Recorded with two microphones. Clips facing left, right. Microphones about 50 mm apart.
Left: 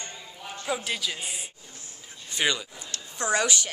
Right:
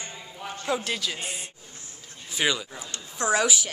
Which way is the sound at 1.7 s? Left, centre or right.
Right.